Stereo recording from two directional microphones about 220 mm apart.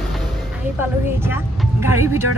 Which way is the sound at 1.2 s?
10° right (ahead or behind).